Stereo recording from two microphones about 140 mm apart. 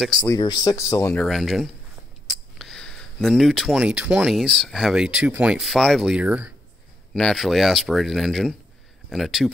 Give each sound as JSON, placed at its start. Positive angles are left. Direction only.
{"t": 0.2, "sound": "speech", "side_deg": 30}
{"t": 1.1, "sound": "speech", "side_deg": 0}
{"t": 7.2, "sound": "speech", "side_deg": 0}